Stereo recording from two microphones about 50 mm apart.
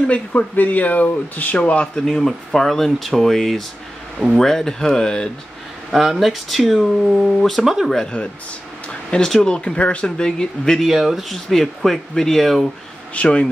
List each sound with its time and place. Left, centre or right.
0.1 s speech: left
2.0 s speech: centre
5.9 s speech: centre
7.5 s speech: centre
9.1 s speech: centre
10.8 s speech: centre
13.1 s speech: left